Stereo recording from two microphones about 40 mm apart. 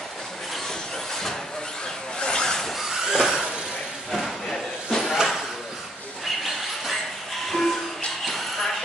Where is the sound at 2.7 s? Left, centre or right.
Centre.